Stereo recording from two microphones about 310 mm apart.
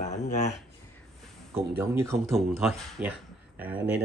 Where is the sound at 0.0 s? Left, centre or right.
Left.